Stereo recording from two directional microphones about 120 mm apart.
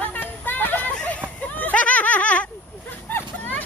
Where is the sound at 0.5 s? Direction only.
15° left (ahead or behind).